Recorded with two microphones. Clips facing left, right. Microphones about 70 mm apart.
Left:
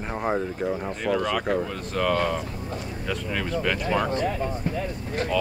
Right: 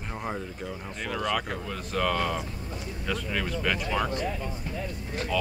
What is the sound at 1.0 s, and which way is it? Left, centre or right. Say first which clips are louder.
Speech: left 5 dB; centre.